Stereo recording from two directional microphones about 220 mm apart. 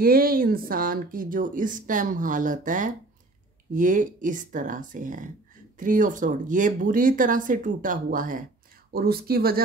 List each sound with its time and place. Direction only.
0.0 s speech: 40° right (ahead or behind)